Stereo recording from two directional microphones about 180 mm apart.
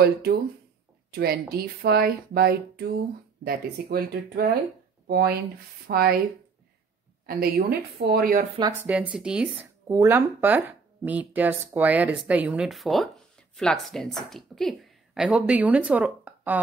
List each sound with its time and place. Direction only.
0.0 s speech: 60° right (ahead or behind)
7.2 s speech: 60° right (ahead or behind)
8.5 s speech: 20° right (ahead or behind)
9.1 s speech: 5° right (ahead or behind)
9.8 s a woman's voice: 15° right (ahead or behind)